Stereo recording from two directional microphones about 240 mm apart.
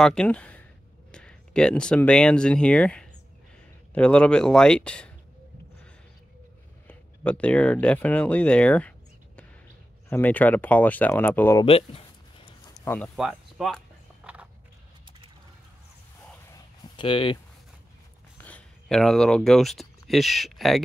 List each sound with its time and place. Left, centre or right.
0.0 s speech: centre
6.9 s speech: centre
10.0 s speech: centre
11.6 s speech: left
12.7 s speech: centre
14.2 s a sound: centre
16.4 s a sound: centre
18.4 s speech: centre